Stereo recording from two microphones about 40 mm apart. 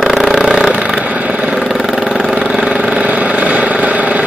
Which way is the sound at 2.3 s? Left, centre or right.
Right.